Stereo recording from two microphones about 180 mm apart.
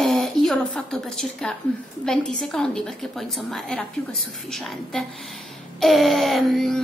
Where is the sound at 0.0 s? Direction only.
Centre (ahead or behind).